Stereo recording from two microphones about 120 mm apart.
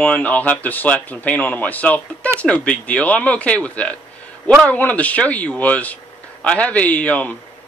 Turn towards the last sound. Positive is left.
turn(degrees=10)  # may be behind; listen again after turning